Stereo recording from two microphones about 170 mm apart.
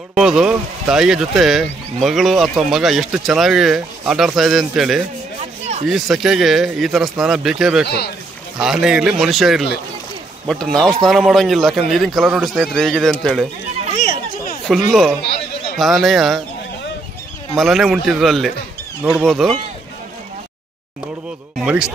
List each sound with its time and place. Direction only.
0.1 s speech: centre (ahead or behind)
5.4 s rub: 40° right (ahead or behind)
5.9 s speech: centre (ahead or behind)
7.8 s speech: 75° left (ahead or behind)
8.5 s speech: centre (ahead or behind)
14.9 s speech: centre (ahead or behind)
17.6 s speech: centre (ahead or behind)
21.5 s speech: 5° right (ahead or behind)